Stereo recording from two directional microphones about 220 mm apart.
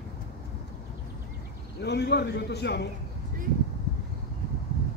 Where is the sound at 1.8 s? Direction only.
50° left (ahead or behind).